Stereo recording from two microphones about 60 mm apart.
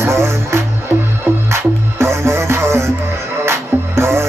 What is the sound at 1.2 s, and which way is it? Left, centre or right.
Music, right.